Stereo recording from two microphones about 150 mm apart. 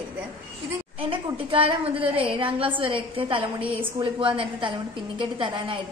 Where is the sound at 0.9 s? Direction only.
40° right (ahead or behind).